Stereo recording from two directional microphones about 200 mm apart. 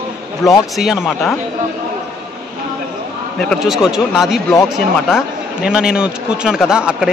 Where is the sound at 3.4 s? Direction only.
Centre (ahead or behind).